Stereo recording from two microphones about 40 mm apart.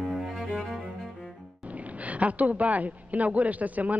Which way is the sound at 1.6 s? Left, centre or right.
Right.